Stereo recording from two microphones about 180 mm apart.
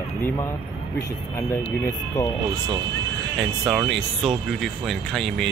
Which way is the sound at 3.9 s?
Centre (ahead or behind).